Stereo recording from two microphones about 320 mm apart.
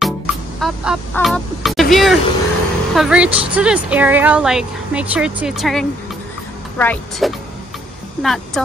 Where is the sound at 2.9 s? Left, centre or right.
Centre.